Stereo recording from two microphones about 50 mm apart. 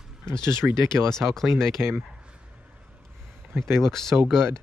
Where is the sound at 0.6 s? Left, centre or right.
Right.